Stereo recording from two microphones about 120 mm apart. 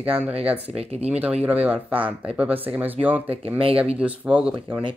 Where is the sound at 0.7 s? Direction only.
65° right (ahead or behind).